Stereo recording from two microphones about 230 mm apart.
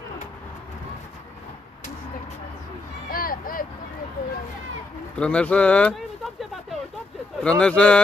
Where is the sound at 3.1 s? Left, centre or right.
Left.